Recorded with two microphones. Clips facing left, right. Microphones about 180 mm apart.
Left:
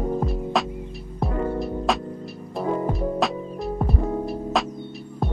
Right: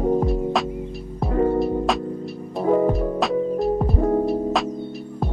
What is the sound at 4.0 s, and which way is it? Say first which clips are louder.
Music: right 7 dB; 55° right (ahead or behind).